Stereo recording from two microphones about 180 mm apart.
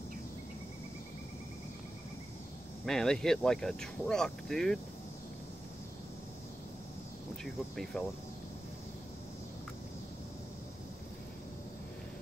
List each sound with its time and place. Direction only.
2.8 s speech: 5° left (ahead or behind)
7.4 s speech: centre (ahead or behind)